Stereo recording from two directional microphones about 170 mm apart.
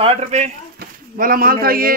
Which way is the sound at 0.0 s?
40° right (ahead or behind).